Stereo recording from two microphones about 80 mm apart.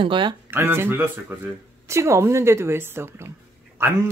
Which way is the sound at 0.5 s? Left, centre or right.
Right.